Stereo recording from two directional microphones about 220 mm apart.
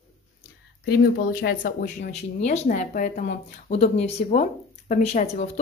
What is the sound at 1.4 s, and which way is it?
Speech, 45° left (ahead or behind).